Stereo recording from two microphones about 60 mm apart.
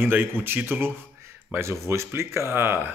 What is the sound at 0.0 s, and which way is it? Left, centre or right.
A man's voice, right.